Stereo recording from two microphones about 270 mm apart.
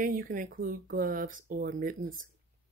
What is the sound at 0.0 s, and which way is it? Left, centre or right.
Speech, right.